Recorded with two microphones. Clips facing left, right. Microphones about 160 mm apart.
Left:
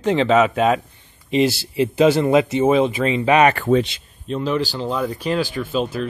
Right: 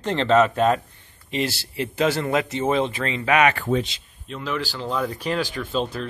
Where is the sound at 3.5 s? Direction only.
70° left (ahead or behind).